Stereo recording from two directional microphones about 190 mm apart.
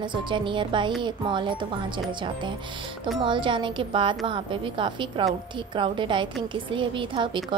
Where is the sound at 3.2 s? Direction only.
25° right (ahead or behind).